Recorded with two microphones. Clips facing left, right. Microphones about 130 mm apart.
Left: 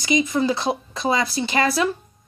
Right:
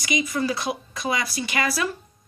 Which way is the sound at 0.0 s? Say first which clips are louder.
Left 5 dB; 25° left (ahead or behind).